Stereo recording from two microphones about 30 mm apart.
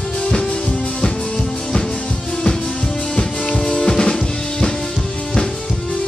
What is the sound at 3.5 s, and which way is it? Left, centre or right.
Music, centre.